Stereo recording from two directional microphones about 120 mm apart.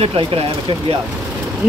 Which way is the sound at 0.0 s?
50° right (ahead or behind).